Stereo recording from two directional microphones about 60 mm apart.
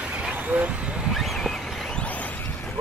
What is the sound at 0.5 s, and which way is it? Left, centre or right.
Speech, right.